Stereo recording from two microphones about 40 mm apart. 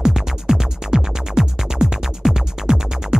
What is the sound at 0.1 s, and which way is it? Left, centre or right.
Music, centre.